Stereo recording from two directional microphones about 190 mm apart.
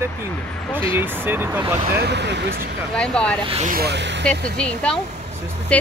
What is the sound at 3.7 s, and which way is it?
Speech, 60° right (ahead or behind).